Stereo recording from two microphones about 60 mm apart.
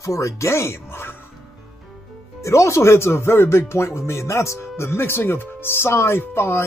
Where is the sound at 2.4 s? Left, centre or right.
Left.